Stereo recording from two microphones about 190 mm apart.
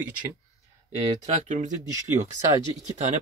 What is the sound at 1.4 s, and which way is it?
Speech, 40° right (ahead or behind).